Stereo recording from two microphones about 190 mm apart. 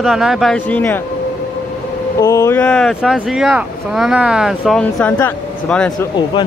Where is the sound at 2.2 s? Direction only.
15° left (ahead or behind).